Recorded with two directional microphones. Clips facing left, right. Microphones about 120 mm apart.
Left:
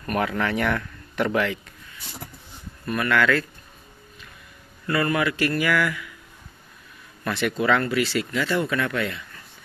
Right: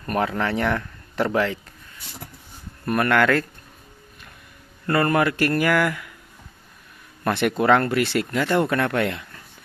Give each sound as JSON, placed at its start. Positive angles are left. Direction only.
{"t": 0.0, "sound": "speech", "side_deg": -30}
{"t": 2.8, "sound": "speech", "side_deg": -55}
{"t": 4.8, "sound": "speech", "side_deg": -50}
{"t": 7.2, "sound": "speech", "side_deg": -55}